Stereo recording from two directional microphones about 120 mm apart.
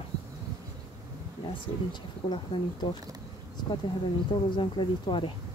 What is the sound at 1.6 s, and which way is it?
Speech, 40° left (ahead or behind).